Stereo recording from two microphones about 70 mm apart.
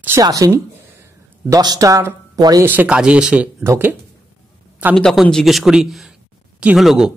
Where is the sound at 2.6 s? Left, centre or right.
Right.